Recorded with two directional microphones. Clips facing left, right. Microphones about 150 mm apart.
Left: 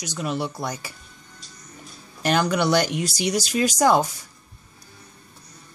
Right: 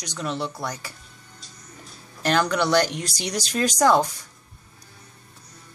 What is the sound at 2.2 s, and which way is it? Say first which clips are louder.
Speech: left 1 dB; 15° left (ahead or behind).